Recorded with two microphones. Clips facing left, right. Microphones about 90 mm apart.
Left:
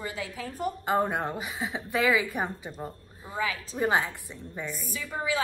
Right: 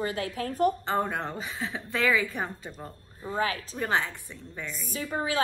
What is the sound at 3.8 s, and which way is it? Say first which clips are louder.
Speech: left 3 dB; 15° left (ahead or behind).